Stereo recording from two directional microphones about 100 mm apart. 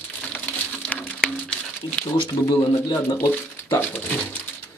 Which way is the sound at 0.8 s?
10° left (ahead or behind).